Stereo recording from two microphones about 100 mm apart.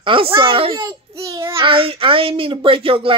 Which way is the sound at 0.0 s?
60° right (ahead or behind).